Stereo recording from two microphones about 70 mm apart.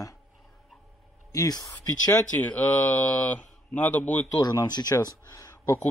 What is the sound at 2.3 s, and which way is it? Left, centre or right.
Speech, left.